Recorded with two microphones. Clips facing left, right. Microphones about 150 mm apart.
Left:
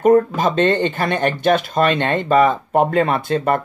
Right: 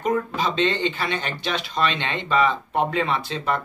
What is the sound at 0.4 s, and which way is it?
Speech, 50° left (ahead or behind).